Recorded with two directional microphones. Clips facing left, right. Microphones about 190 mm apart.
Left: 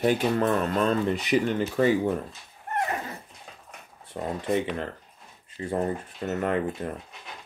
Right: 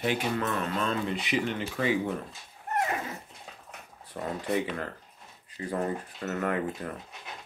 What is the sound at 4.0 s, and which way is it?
Speech, 25° left (ahead or behind).